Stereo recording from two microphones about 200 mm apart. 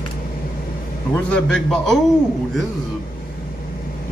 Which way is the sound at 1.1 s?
5° left (ahead or behind).